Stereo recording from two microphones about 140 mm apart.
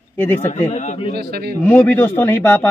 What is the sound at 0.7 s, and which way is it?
Speech, 60° left (ahead or behind).